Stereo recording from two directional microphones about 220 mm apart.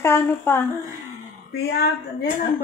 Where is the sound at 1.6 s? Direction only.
45° left (ahead or behind).